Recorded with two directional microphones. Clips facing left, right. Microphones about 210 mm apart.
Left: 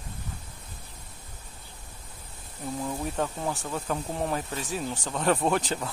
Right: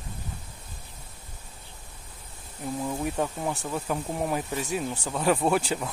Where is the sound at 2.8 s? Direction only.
10° right (ahead or behind).